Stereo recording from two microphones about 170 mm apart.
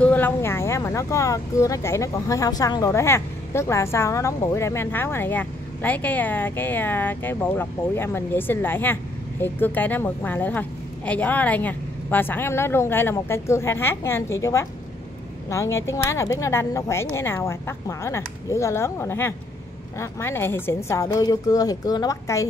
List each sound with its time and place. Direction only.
0.0 s a woman's voice: 10° left (ahead or behind)